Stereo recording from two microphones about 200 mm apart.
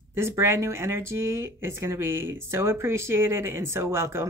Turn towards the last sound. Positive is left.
turn(degrees=-10)  # may be behind; listen again after turning